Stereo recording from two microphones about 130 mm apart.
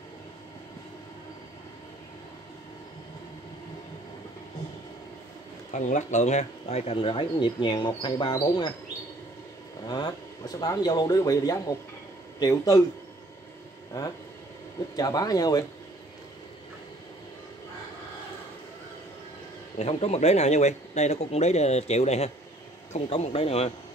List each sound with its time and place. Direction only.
5.7 s speech: 65° left (ahead or behind); by 8.7 s 35° left (ahead or behind)
9.8 s speech: 30° left (ahead or behind)
15.0 s speech: 30° left (ahead or behind)
19.8 s speech: 55° left (ahead or behind)